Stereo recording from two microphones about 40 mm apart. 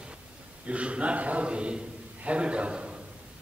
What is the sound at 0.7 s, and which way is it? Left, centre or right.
A man's voice, right.